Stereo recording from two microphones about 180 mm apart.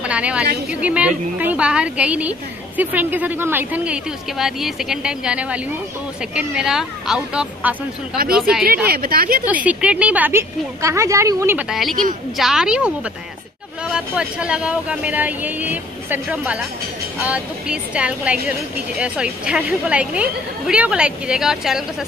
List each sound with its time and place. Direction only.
0.0 s a sound: 5° right (ahead or behind)
0.7 s speech: 5° right (ahead or behind)
8.8 s a woman's voice: 55° right (ahead or behind)
9.5 s speech: 10° right (ahead or behind)
12.4 s speech: 5° right (ahead or behind)